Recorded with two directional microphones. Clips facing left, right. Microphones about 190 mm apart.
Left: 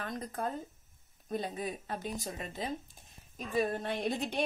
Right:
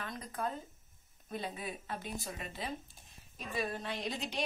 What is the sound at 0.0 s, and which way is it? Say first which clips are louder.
A woman's voice: left 3 dB; 45° left (ahead or behind).